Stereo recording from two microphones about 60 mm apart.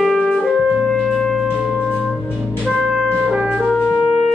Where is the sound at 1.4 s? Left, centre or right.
Centre.